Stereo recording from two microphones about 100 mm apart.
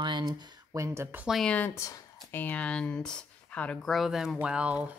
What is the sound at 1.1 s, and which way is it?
Speech, 20° right (ahead or behind).